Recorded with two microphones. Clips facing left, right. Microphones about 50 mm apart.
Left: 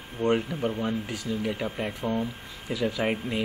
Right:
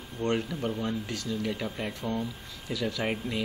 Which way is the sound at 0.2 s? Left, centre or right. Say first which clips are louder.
Left 4 dB; centre.